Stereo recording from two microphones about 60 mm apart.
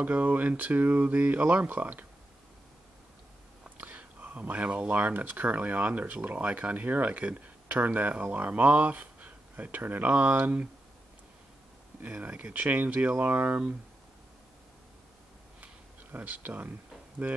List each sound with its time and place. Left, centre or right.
0.0 s speech: right
3.7 s speech: right
12.0 s speech: right
15.6 s a sound: right